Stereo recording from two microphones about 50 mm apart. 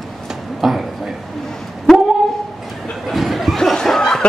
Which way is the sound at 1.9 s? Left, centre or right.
Centre.